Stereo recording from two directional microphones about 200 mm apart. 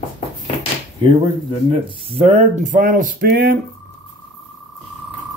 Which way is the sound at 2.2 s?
35° right (ahead or behind).